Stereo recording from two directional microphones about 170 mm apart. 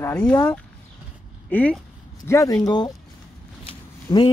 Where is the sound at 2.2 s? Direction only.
20° left (ahead or behind).